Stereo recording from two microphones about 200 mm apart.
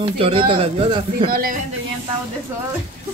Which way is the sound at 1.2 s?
45° right (ahead or behind).